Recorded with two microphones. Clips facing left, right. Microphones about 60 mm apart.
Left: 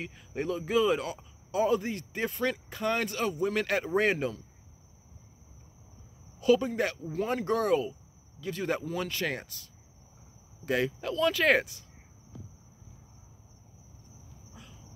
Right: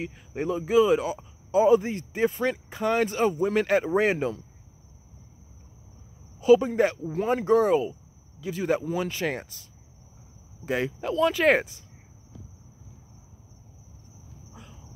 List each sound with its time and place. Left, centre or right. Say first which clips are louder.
0.0 s speech: right 4 dB; centre
6.4 s speech: right 6 dB; centre
14.5 s a sound: right 3 dB; right